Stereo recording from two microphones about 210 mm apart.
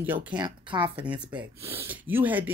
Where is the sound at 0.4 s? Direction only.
20° right (ahead or behind).